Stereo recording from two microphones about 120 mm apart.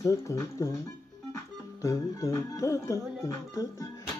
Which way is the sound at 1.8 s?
25° left (ahead or behind).